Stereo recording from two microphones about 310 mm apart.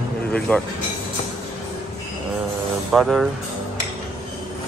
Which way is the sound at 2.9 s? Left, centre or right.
Centre.